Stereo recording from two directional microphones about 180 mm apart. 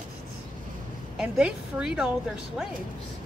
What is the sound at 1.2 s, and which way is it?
Speech, 5° right (ahead or behind).